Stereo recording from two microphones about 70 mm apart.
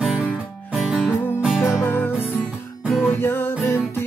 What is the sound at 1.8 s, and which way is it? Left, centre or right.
Music, left.